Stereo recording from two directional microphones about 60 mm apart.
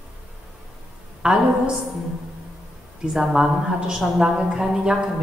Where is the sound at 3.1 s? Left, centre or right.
Centre.